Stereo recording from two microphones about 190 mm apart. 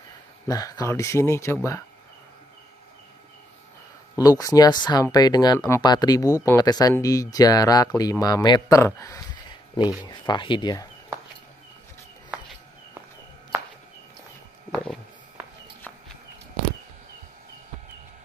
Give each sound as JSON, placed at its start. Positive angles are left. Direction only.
{"t": 0.5, "sound": "speech", "side_deg": 20}
{"t": 4.2, "sound": "speech", "side_deg": 20}
{"t": 14.7, "sound": "a sound", "side_deg": 5}